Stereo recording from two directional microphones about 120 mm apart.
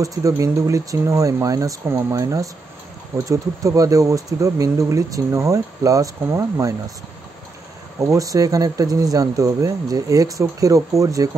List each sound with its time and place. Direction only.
0.0 s speech: 30° right (ahead or behind)
8.1 s speech: 30° right (ahead or behind)